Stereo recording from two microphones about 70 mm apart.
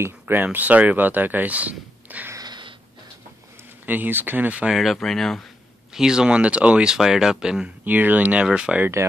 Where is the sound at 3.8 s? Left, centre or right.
Right.